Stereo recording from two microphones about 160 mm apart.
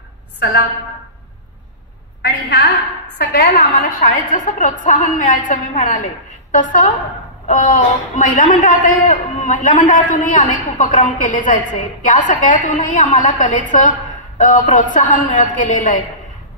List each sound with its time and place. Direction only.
0.4 s a woman's voice: 90° left
2.2 s a woman's voice: 90° left; by 16.0 s 55° left (ahead or behind)